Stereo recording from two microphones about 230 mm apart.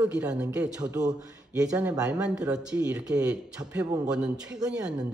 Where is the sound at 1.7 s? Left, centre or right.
Centre.